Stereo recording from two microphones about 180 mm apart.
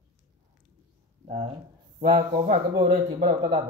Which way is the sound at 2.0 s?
45° right (ahead or behind).